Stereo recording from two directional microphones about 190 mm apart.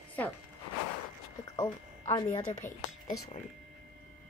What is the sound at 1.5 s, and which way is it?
Speech, 20° left (ahead or behind).